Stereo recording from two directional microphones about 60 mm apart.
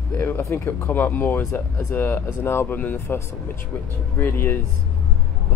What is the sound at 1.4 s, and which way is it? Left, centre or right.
Speech, left.